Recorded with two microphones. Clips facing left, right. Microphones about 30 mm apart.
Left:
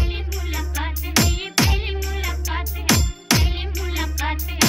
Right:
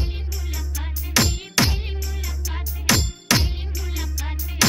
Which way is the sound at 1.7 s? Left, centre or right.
Left.